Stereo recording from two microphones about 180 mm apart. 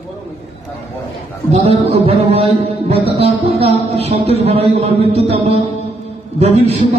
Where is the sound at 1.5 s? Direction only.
35° right (ahead or behind).